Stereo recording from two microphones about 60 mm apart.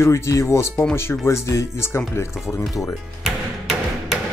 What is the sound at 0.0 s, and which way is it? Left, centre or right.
Speech, left.